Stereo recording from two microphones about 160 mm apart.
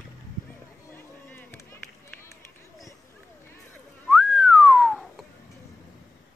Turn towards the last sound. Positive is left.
turn(degrees=0)  # may be behind; listen again after turning